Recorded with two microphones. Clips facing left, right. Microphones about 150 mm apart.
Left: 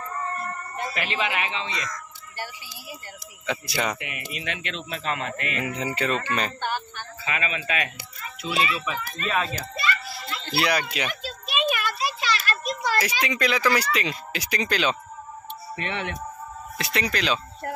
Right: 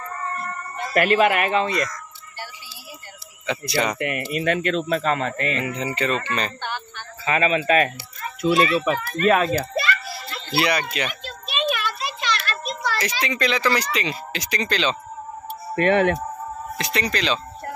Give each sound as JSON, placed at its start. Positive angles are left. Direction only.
{"t": 0.9, "sound": "speech", "side_deg": -50}
{"t": 3.4, "sound": "speech", "side_deg": 5}
{"t": 4.3, "sound": "speech", "side_deg": -50}
{"t": 5.6, "sound": "speech", "side_deg": 5}
{"t": 7.2, "sound": "speech", "side_deg": -35}
{"t": 9.8, "sound": "children playing", "side_deg": -50}
{"t": 10.5, "sound": "a child's voice", "side_deg": 0}
{"t": 11.7, "sound": "a sound", "side_deg": 10}
{"t": 13.0, "sound": "speech", "side_deg": 10}
{"t": 15.7, "sound": "speech", "side_deg": -55}
{"t": 16.7, "sound": "speech", "side_deg": 5}